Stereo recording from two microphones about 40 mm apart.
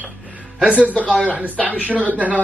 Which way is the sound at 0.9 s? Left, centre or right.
Left.